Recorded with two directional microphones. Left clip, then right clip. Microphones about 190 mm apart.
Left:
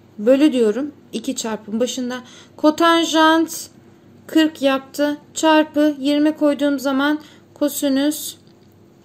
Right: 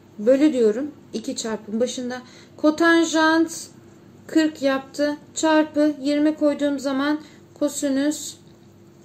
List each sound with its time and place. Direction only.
0.2 s child singing: 40° left (ahead or behind)